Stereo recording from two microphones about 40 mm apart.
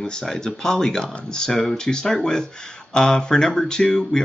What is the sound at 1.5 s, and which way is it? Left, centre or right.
Speech, centre.